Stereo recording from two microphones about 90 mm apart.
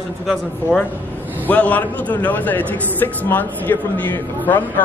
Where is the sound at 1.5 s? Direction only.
15° left (ahead or behind).